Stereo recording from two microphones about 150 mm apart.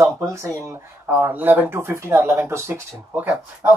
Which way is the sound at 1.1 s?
10° right (ahead or behind).